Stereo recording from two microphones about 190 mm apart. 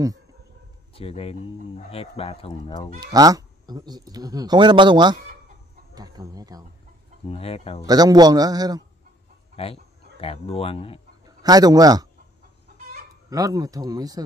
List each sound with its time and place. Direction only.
0.9 s speech: 30° left (ahead or behind)
3.0 s speech: 20° right (ahead or behind)
7.2 s speech: 30° left (ahead or behind)
7.8 s speech: 20° right (ahead or behind)
9.6 s speech: 30° left (ahead or behind)
11.2 s a man's voice: 20° right (ahead or behind)
13.3 s speech: 20° right (ahead or behind)